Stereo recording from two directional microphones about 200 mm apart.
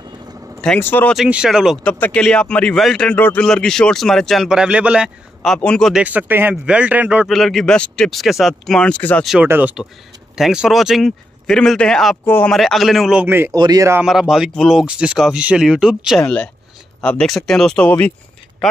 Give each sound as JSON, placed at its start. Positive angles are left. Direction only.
{"t": 0.6, "sound": "speech", "side_deg": 5}
{"t": 1.1, "sound": "a man's voice", "side_deg": -5}
{"t": 14.0, "sound": "speech", "side_deg": 0}